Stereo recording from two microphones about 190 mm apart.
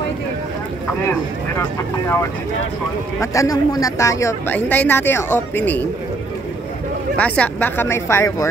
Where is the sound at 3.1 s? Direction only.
15° left (ahead or behind).